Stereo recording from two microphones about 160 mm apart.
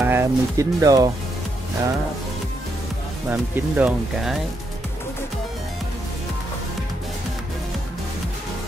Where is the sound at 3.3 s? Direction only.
5° right (ahead or behind).